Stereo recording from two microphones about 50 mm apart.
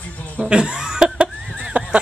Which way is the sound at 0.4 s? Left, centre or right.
Centre.